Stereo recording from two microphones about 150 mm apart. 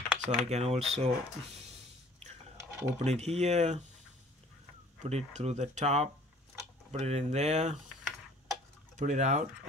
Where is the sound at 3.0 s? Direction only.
45° right (ahead or behind).